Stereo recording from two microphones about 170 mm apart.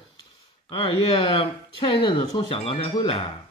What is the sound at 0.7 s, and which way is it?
Speech, 30° left (ahead or behind).